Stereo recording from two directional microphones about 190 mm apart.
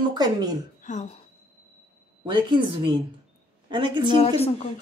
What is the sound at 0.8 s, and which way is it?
Speech, 40° left (ahead or behind).